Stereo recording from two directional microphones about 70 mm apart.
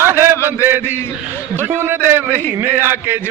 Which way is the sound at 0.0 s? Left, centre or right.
Right.